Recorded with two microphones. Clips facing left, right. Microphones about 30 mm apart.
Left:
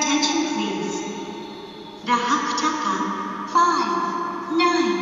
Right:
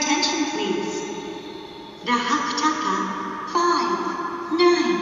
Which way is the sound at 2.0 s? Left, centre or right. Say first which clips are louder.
Left 1 dB; right.